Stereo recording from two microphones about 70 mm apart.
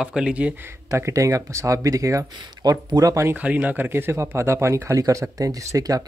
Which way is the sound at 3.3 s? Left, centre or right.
Right.